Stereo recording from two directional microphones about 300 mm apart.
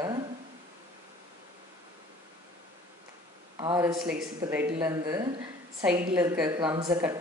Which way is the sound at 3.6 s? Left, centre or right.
Centre.